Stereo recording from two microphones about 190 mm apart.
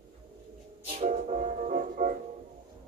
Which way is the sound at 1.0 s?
45° right (ahead or behind).